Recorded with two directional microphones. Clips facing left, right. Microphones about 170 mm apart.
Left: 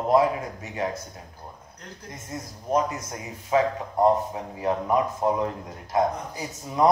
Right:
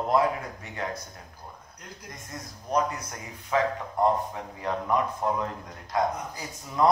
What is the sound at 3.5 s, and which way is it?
Speech, 20° left (ahead or behind).